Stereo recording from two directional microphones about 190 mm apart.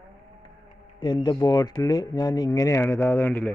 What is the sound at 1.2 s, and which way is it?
Speech, 20° left (ahead or behind).